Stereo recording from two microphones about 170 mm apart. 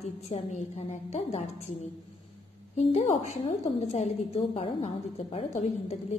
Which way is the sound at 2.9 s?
40° left (ahead or behind).